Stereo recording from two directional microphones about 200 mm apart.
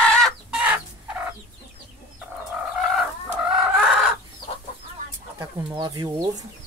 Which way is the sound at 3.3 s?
Centre (ahead or behind).